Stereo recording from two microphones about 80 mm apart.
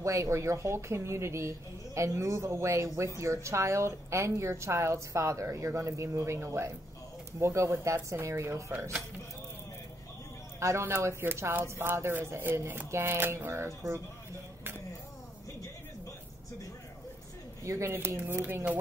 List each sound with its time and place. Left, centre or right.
0.0 s a woman's voice: right
10.6 s a man's voice: right
17.6 s speech: right